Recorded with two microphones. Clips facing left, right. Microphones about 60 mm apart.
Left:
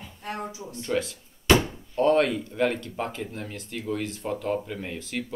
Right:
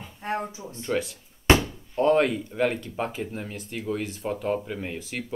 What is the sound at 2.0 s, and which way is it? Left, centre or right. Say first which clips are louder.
Speech: even; centre.